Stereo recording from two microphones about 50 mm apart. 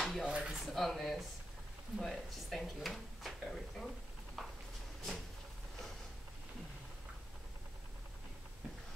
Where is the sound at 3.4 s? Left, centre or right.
Centre.